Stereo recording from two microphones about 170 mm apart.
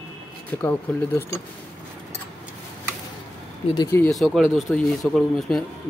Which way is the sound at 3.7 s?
25° left (ahead or behind).